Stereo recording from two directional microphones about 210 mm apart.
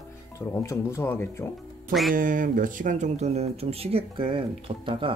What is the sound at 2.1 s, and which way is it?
Speech, 40° right (ahead or behind).